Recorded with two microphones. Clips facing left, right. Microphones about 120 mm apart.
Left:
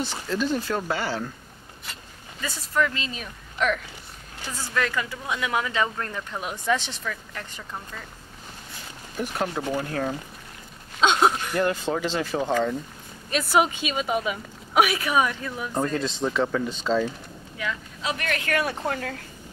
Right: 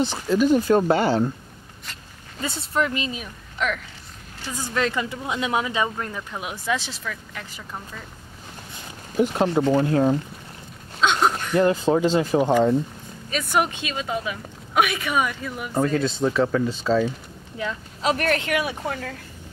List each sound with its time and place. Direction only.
0.3 s speech: 15° right (ahead or behind)
0.7 s speech: 30° right (ahead or behind)
2.4 s speech: 25° right (ahead or behind)
3.2 s a woman's voice: centre (ahead or behind)
4.5 s speech: 20° right (ahead or behind); by 8.0 s 5° right (ahead or behind)
9.1 s speech: 25° right (ahead or behind)
11.0 s a sound: 10° left (ahead or behind)
11.6 s speech: 30° right (ahead or behind)
12.4 s speech: 15° right (ahead or behind)
13.3 s speech: 5° left (ahead or behind)
17.6 s speech: 30° right (ahead or behind)
18.5 s speech: 5° right (ahead or behind)